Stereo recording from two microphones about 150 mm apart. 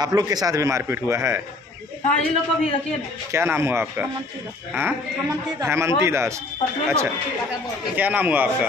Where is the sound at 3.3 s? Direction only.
15° right (ahead or behind).